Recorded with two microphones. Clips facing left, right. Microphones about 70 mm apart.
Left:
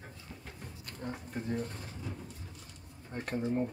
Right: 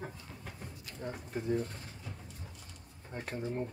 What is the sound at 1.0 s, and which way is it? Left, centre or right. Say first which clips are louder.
Speech: right 1 dB; centre.